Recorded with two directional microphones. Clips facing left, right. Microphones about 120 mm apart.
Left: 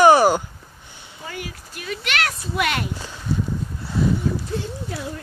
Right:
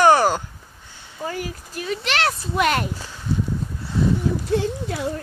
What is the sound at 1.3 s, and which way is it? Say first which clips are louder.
Speech: right 4 dB; 35° right (ahead or behind).